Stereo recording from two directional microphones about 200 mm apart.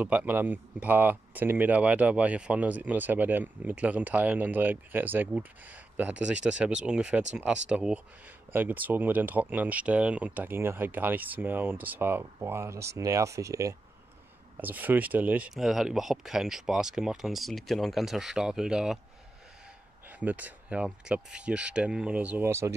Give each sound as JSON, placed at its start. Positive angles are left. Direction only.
{"t": 0.0, "sound": "speech", "side_deg": -5}
{"t": 20.1, "sound": "speech", "side_deg": -10}